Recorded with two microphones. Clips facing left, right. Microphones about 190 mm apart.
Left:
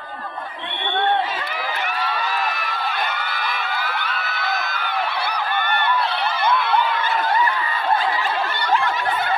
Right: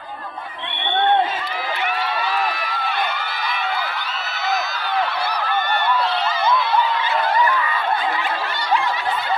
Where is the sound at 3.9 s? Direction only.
55° left (ahead or behind).